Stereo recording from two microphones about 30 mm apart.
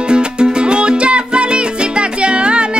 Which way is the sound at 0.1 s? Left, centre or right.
Right.